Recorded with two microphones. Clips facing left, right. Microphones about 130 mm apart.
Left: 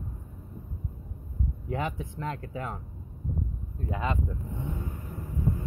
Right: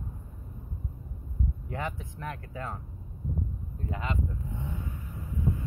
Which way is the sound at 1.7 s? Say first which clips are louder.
Left 6 dB; 20° left (ahead or behind).